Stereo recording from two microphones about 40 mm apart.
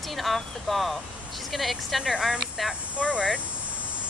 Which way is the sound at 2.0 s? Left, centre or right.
Centre.